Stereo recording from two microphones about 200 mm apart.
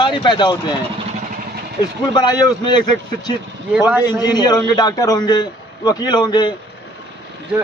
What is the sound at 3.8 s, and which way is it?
Speech, 10° right (ahead or behind).